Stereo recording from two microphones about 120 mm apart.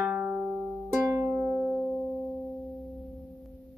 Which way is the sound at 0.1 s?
15° right (ahead or behind).